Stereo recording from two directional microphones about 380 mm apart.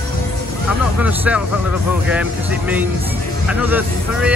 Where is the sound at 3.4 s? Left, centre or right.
Centre.